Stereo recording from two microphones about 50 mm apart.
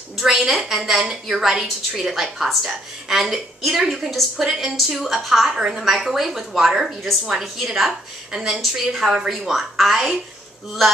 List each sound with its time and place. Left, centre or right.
0.2 s a woman's voice: centre